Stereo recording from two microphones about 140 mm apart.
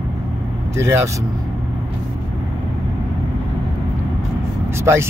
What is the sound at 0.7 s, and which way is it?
Speech, 20° right (ahead or behind).